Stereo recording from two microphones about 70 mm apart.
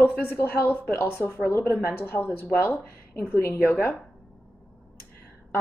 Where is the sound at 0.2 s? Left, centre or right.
Left.